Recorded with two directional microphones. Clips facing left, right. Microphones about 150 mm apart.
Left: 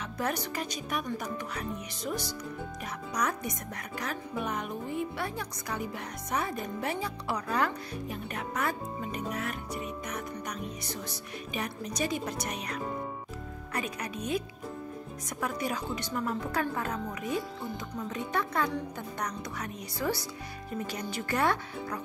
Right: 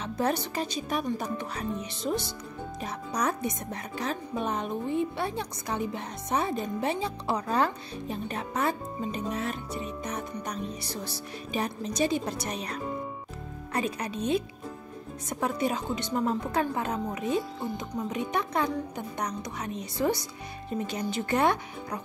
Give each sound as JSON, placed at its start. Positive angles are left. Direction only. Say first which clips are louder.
{"t": 0.0, "sound": "speech", "louder": "right 4 dB", "side_deg": -30}